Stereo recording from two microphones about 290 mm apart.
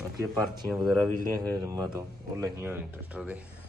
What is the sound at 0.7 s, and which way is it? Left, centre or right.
Speech, centre.